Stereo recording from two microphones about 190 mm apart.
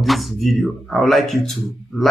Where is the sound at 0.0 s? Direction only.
Centre (ahead or behind).